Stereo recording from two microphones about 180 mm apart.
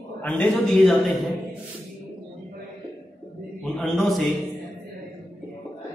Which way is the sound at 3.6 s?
Centre (ahead or behind).